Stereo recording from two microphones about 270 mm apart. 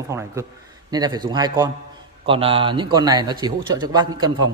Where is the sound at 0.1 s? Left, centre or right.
Centre.